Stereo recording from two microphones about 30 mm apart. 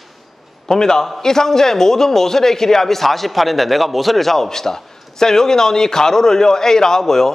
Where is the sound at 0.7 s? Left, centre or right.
Centre.